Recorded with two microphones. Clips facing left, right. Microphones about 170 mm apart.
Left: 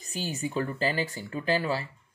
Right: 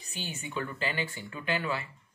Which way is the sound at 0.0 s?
40° left (ahead or behind).